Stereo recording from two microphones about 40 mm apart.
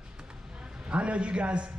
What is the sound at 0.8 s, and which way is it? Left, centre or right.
Speech, right.